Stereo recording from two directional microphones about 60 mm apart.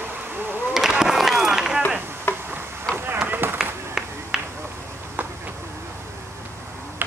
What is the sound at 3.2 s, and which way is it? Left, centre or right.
Run, right.